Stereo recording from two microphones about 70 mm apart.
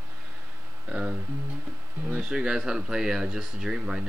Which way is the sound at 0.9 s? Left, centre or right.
Centre.